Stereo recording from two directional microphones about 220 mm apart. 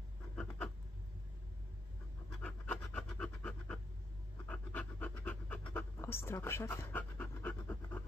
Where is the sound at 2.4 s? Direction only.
5° left (ahead or behind).